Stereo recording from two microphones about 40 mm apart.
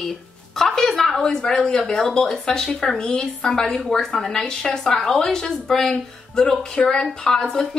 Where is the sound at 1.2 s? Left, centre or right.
Centre.